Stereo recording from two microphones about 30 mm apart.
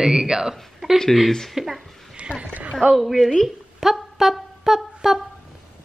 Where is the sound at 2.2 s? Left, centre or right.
Right.